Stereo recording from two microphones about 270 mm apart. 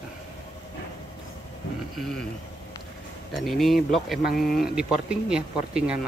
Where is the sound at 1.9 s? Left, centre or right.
Centre.